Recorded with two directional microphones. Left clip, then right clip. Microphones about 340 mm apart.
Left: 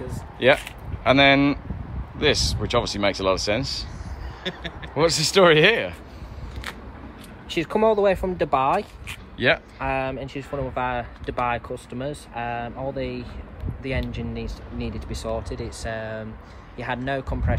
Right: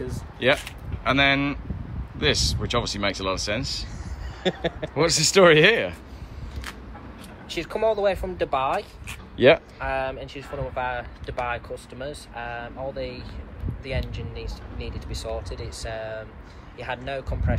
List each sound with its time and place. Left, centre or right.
0.4 s speech: centre
4.4 s speech: centre
4.9 s speech: centre
7.5 s speech: left
9.0 s a sound: centre
9.8 s speech: left